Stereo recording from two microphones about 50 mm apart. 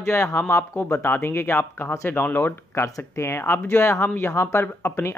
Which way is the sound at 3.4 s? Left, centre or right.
Left.